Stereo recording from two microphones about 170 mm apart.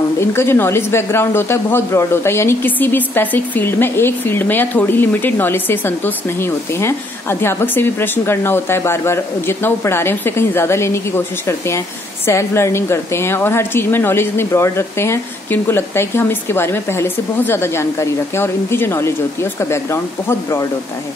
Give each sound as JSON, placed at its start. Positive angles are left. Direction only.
{"t": 0.2, "sound": "speech", "side_deg": 15}